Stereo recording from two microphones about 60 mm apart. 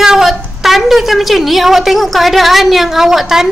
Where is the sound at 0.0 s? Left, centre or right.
Centre.